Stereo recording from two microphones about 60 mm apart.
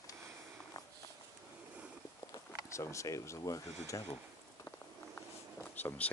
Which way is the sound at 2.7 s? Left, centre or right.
Left.